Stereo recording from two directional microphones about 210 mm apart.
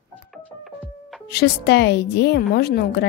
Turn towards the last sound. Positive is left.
turn(degrees=50)  # may be behind; listen again after turning